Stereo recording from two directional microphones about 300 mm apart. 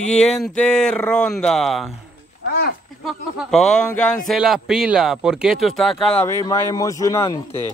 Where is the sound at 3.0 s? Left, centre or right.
Centre.